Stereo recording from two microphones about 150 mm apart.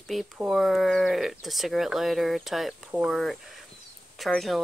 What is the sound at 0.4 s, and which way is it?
Speech, centre (ahead or behind).